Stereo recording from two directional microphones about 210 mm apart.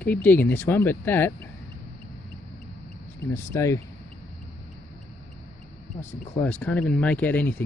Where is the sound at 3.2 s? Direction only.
10° left (ahead or behind).